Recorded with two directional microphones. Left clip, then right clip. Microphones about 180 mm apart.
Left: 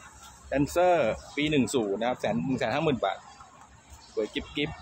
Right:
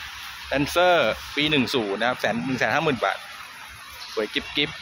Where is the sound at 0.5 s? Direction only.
Centre (ahead or behind).